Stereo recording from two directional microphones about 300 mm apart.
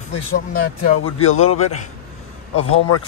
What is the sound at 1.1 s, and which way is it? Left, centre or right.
Speech, left.